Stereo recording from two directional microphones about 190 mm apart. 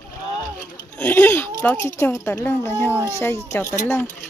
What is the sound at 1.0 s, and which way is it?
Speech, 10° left (ahead or behind).